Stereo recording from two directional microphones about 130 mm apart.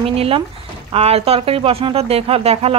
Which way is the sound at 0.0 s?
50° right (ahead or behind).